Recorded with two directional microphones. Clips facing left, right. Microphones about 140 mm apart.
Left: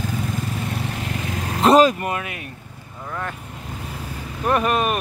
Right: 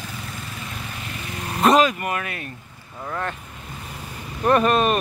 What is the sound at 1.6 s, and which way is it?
Vehicle, 30° left (ahead or behind).